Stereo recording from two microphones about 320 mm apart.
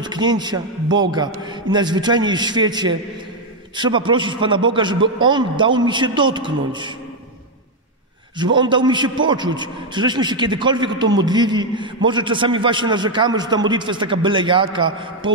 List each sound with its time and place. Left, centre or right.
0.0 s a man's voice: centre
8.4 s a man's voice: centre